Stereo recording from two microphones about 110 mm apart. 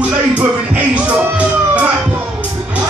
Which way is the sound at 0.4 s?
15° right (ahead or behind).